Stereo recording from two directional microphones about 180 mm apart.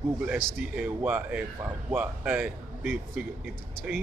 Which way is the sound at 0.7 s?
10° right (ahead or behind).